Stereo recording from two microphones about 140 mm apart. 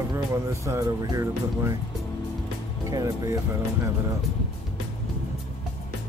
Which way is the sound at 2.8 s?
25° right (ahead or behind).